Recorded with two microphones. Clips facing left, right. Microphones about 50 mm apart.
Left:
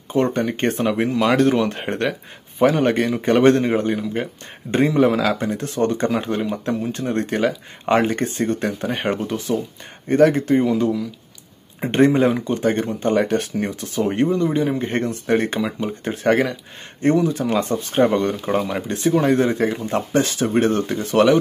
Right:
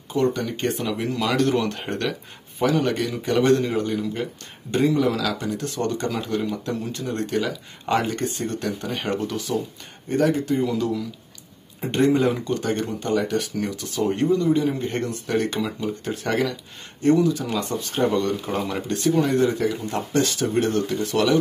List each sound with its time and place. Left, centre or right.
0.1 s speech: left
2.8 s speech: left
10.0 s speech: left
10.6 s speech: left
19.2 s speech: left